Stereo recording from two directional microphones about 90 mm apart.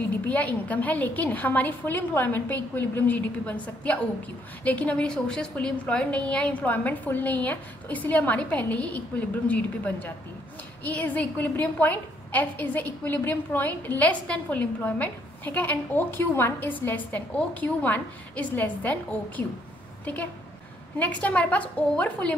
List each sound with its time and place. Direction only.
0.2 s a woman's voice: 15° left (ahead or behind)
21.0 s a woman's voice: 15° left (ahead or behind)